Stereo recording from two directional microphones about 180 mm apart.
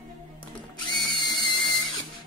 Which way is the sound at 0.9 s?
20° left (ahead or behind).